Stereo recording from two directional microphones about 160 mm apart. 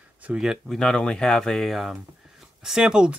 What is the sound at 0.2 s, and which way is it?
Speech, 5° right (ahead or behind).